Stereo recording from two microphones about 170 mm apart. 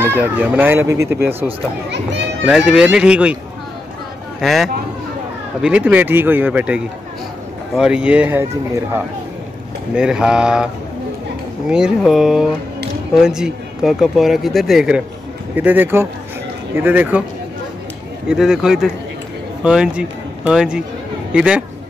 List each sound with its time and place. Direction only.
0.0 s speech: 10° right (ahead or behind)
1.9 s a child's voice: 90° right
2.4 s speech: 5° right (ahead or behind)
4.4 s speech: centre (ahead or behind)
9.9 s speech: 5° right (ahead or behind)
11.7 s speech: 5° right (ahead or behind)
18.3 s speech: 5° right (ahead or behind)